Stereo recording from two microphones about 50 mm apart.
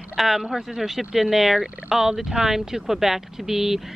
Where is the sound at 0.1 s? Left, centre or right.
Centre.